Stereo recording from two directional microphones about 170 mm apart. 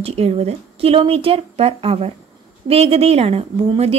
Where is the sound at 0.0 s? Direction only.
35° right (ahead or behind).